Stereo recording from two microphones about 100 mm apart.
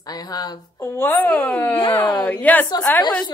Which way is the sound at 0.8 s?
20° left (ahead or behind).